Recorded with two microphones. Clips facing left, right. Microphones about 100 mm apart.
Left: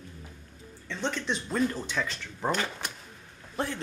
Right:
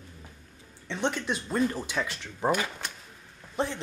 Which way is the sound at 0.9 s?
20° right (ahead or behind).